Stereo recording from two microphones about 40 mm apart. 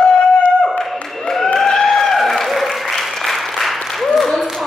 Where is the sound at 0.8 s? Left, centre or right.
Centre.